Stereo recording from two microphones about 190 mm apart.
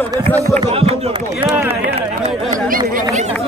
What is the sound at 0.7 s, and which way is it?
Speech, 30° right (ahead or behind).